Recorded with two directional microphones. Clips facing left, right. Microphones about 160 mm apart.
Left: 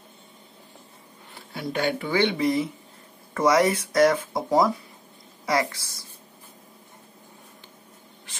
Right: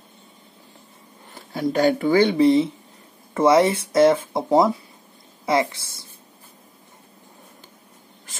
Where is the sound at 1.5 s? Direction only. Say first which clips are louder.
Right 7 dB; 40° right (ahead or behind).